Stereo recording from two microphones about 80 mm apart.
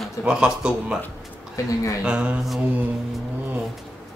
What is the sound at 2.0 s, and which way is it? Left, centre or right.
Speech, centre.